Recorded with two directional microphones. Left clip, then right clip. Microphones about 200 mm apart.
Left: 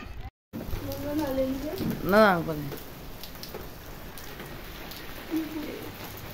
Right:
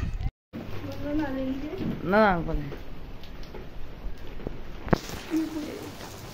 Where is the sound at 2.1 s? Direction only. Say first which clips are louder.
Left 1 dB; 15° left (ahead or behind).